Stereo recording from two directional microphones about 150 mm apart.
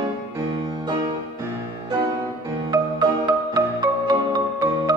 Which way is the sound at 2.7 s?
25° right (ahead or behind).